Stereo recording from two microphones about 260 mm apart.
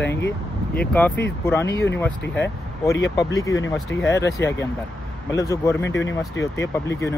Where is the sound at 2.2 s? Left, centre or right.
Left.